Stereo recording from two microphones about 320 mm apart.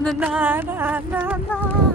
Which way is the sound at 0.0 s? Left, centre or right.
Centre.